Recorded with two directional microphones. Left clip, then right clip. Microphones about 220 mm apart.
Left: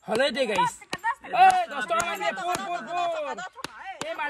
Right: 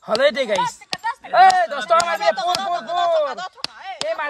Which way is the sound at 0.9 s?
50° right (ahead or behind).